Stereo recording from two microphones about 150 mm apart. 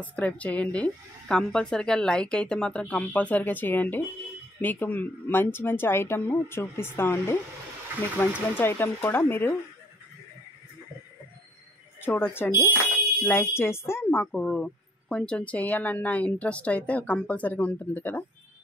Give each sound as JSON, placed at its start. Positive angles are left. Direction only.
{"t": 0.0, "sound": "a woman's voice", "side_deg": 10}
{"t": 12.0, "sound": "a woman's voice", "side_deg": 15}